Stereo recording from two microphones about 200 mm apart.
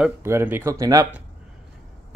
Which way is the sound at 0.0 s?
10° right (ahead or behind).